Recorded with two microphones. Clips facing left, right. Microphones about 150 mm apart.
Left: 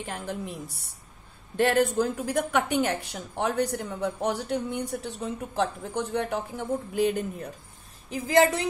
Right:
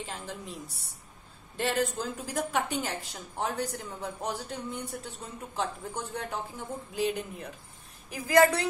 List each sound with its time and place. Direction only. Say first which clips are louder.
0.0 s a woman's voice: left 6 dB; 60° left (ahead or behind)
1.6 s a woman's voice: left 7 dB; 55° left (ahead or behind)
8.1 s a woman's voice: left 1 dB; 25° left (ahead or behind)